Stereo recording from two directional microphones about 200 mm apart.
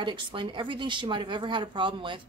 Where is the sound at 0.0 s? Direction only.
25° right (ahead or behind).